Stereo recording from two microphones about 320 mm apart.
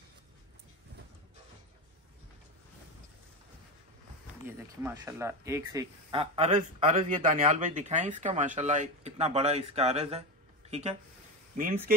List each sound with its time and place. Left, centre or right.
4.5 s speech: centre; by 11.8 s right